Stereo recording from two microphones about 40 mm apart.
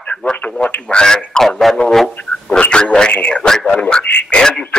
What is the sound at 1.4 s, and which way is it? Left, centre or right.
Speech, centre.